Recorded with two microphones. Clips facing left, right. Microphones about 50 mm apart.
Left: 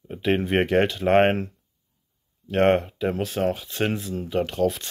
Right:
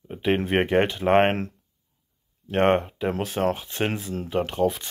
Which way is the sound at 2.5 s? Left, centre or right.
Right.